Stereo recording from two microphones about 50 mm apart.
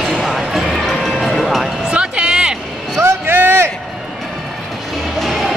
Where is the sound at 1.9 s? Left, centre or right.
Centre.